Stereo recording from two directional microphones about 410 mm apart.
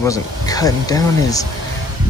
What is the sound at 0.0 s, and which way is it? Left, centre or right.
Speech, centre.